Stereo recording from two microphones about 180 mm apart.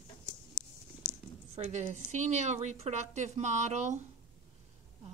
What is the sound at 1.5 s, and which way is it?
A woman's voice, 40° right (ahead or behind).